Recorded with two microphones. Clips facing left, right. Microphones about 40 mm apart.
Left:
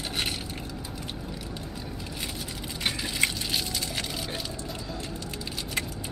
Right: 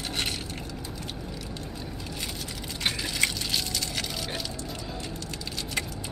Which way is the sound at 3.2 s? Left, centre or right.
Centre.